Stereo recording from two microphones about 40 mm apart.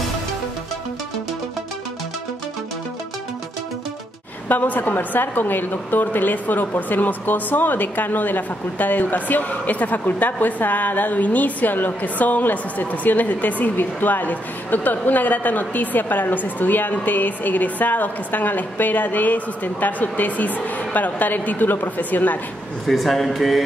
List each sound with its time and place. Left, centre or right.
4.5 s a woman's voice: left
22.8 s speech: centre